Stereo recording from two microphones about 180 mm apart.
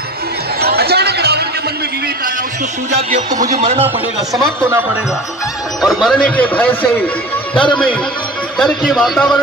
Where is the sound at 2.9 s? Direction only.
40° right (ahead or behind).